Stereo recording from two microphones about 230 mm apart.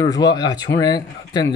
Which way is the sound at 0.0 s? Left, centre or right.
Centre.